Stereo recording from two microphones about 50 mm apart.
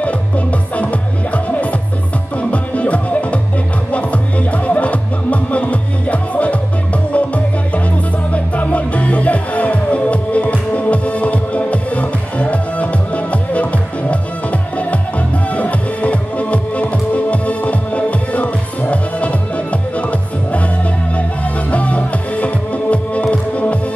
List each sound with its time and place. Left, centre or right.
0.0 s music: left